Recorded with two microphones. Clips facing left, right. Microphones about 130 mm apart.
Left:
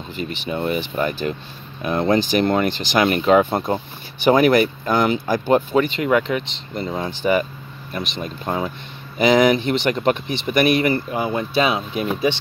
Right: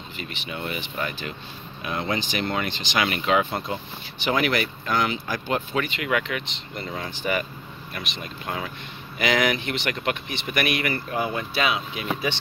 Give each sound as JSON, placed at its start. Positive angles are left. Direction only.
{"t": 0.3, "sound": "speech", "side_deg": 35}